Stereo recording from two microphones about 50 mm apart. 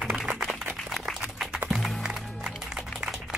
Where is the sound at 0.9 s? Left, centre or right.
Centre.